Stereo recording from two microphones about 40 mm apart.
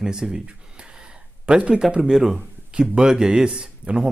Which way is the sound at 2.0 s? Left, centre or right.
Centre.